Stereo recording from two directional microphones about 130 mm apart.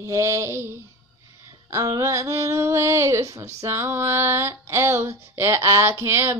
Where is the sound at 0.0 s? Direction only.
25° right (ahead or behind).